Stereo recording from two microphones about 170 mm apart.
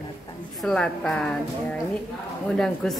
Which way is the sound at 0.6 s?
5° left (ahead or behind).